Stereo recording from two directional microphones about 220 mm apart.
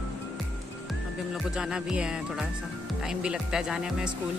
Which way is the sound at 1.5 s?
5° right (ahead or behind).